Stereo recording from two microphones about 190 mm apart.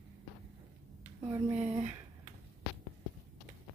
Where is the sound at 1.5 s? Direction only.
35° right (ahead or behind).